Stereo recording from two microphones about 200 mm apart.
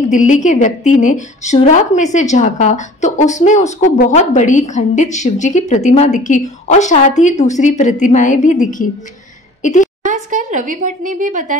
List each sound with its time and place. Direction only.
0.1 s a woman's voice: 40° left (ahead or behind)
10.0 s speech: 40° right (ahead or behind)